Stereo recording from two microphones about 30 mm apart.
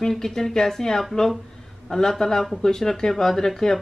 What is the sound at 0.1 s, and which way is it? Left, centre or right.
Speech, centre.